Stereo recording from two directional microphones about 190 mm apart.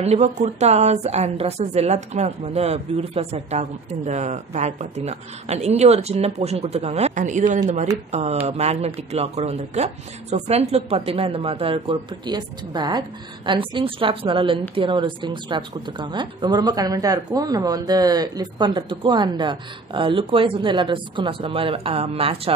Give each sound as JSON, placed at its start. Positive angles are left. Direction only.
{"t": 0.0, "sound": "a woman's voice", "side_deg": -35}